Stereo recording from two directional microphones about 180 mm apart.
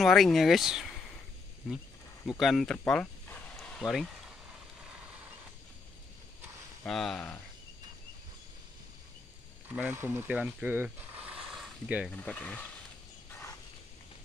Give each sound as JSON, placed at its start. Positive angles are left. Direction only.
{"t": 0.0, "sound": "speech", "side_deg": 0}
{"t": 2.2, "sound": "speech", "side_deg": 0}
{"t": 6.8, "sound": "speech", "side_deg": 0}
{"t": 9.8, "sound": "speech", "side_deg": -10}
{"t": 12.1, "sound": "speech", "side_deg": 10}
{"t": 13.3, "sound": "mechanisms", "side_deg": 15}